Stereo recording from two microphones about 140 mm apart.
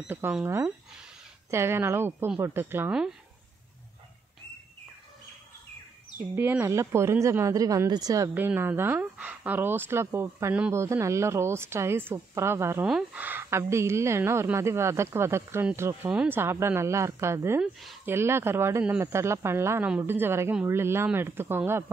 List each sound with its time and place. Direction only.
0.1 s speech: 15° right (ahead or behind)
6.1 s a woman's voice: 15° right (ahead or behind)
8.4 s a woman's voice: 15° right (ahead or behind)
12.8 s a woman's voice: 5° right (ahead or behind)
17.6 s speech: centre (ahead or behind)
18.0 s speech: 15° right (ahead or behind)